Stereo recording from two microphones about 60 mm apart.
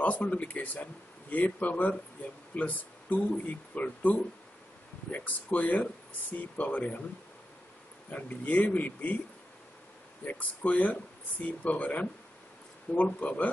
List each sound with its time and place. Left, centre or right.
0.0 s speech: left
8.1 s speech: left
10.2 s speech: left